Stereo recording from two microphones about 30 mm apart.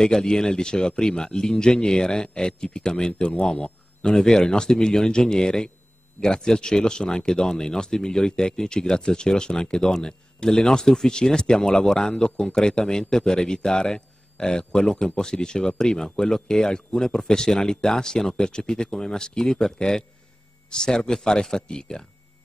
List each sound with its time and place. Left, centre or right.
0.0 s a man's voice: left
4.0 s speech: left